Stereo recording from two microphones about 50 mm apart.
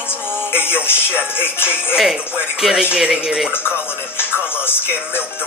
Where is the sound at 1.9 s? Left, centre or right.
Centre.